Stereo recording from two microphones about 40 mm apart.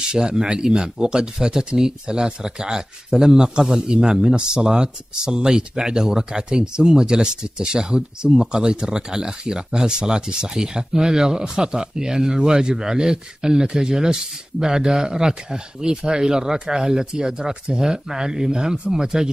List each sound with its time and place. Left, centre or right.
0.0 s speech: centre